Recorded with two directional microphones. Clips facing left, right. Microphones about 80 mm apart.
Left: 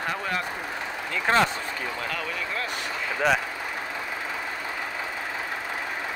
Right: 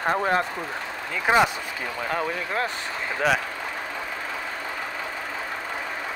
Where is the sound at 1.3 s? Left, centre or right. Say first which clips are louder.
Right 2 dB; centre.